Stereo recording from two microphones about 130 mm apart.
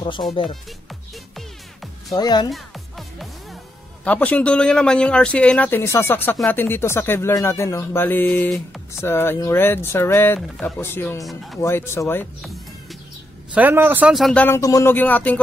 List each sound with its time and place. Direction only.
0.3 s speech: 45° left (ahead or behind)
1.3 s music: centre (ahead or behind)
2.1 s speech: 30° left (ahead or behind)
2.5 s music: centre (ahead or behind)
4.0 s a man's voice: 10° left (ahead or behind)
11.2 s speech: centre (ahead or behind)
11.6 s speech: 20° left (ahead or behind)
13.6 s speech: 15° right (ahead or behind)
14.1 s speech: centre (ahead or behind)
14.4 s a man's voice: 20° left (ahead or behind)